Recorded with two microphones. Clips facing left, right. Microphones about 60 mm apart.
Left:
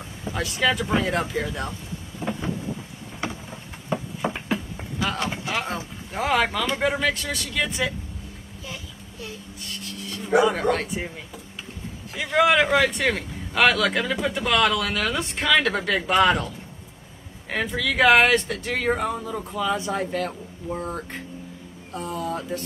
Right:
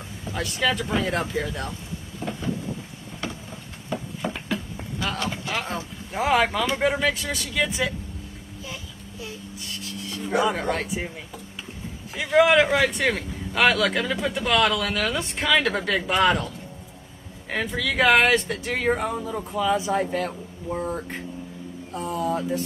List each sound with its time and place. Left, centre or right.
0.3 s a man's voice: centre
1.7 s boat: left
4.2 s a sound: centre
5.5 s vehicle: centre
6.1 s a man's voice: centre
9.2 s a sound: centre
10.4 s a man's voice: centre
17.5 s a man's voice: centre